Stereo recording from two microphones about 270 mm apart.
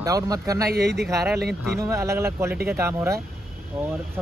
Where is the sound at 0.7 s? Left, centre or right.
Right.